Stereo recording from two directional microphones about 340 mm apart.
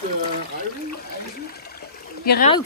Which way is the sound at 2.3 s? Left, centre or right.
Left.